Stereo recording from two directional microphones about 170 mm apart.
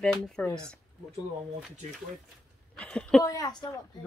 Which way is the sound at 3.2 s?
20° left (ahead or behind).